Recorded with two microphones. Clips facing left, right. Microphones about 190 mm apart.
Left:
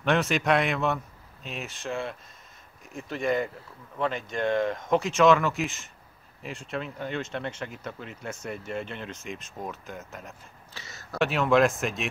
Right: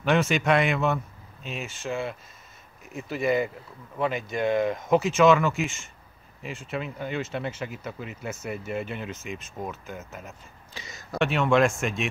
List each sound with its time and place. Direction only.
0.0 s speech: centre (ahead or behind)
10.7 s speech: 15° right (ahead or behind)
11.1 s speech: centre (ahead or behind)